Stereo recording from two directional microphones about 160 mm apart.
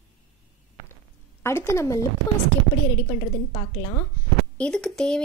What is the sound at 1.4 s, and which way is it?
Speech, 15° left (ahead or behind).